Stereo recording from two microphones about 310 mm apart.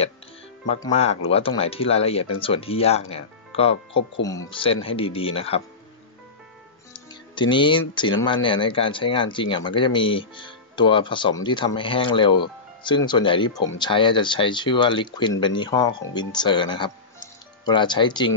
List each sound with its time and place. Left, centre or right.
0.7 s speech: centre
6.9 s speech: centre